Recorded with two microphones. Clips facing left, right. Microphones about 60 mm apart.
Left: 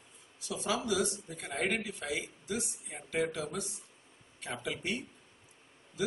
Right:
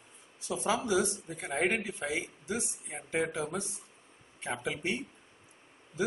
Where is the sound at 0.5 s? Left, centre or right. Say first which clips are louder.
Right 3 dB; right.